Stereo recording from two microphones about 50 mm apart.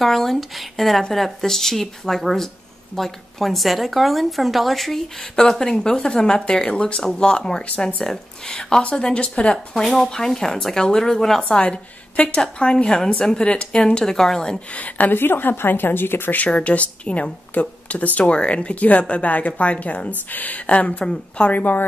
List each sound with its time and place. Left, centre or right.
0.0 s a woman's voice: centre
5.3 s a woman's voice: centre
11.5 s a woman's voice: left
14.7 s a woman's voice: left
15.1 s speech: left
16.4 s a woman's voice: left
21.5 s a woman's voice: left